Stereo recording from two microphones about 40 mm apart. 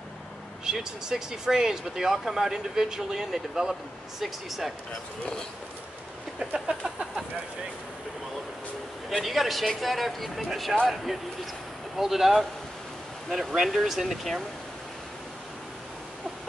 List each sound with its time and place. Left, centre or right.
0.7 s speech: centre
4.2 s speech: centre
6.5 s a sound: right
9.2 s speech: centre
12.0 s speech: centre